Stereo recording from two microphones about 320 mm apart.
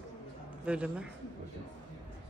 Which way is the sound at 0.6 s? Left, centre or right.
Centre.